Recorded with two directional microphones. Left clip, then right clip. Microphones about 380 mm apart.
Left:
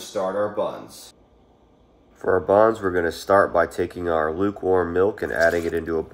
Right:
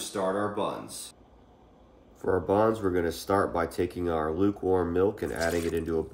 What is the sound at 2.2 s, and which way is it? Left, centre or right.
Speech, centre.